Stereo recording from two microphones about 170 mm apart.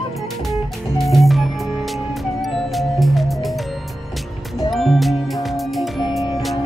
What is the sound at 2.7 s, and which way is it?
Music, centre (ahead or behind).